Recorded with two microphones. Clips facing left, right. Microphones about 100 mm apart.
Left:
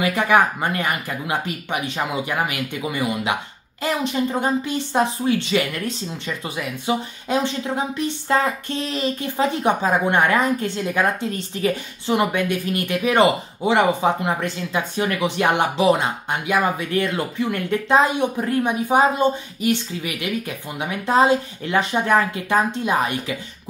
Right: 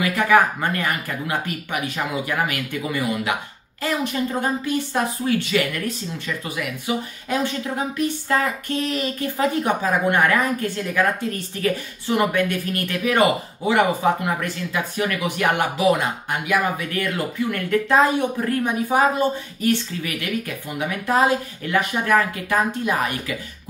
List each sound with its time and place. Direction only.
0.0 s speech: 20° left (ahead or behind)